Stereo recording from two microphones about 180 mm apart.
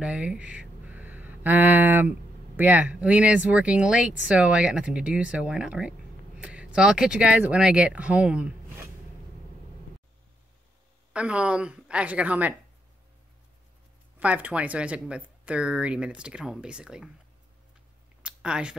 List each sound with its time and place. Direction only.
0.0 s speech: 5° right (ahead or behind)
11.1 s speech: 5° right (ahead or behind)
14.2 s speech: 10° right (ahead or behind)
18.2 s a sound: 5° right (ahead or behind)